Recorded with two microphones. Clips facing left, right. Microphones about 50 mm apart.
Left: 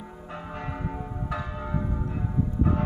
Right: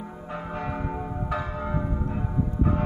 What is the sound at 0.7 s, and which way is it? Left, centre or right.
Church bell, right.